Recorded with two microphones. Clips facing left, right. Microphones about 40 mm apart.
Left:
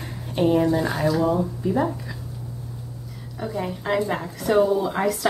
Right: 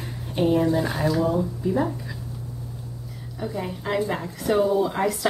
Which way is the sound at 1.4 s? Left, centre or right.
Centre.